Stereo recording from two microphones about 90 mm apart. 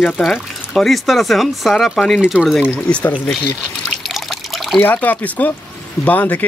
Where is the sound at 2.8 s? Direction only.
15° left (ahead or behind).